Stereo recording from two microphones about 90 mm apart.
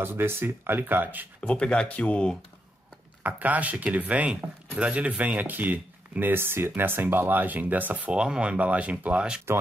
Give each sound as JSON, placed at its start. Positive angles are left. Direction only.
{"t": 0.0, "sound": "speech", "side_deg": -25}
{"t": 1.4, "sound": "speech", "side_deg": 15}
{"t": 3.3, "sound": "speech", "side_deg": -15}